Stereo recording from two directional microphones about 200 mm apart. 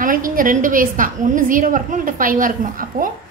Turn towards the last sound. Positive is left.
turn(degrees=-45)  # may be behind; listen again after turning